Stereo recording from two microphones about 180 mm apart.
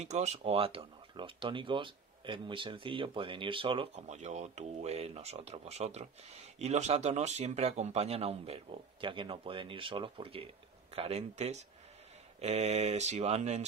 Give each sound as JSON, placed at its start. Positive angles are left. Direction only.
{"t": 0.0, "sound": "speech", "side_deg": -40}